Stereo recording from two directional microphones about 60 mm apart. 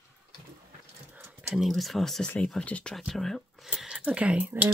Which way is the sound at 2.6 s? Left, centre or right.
Left.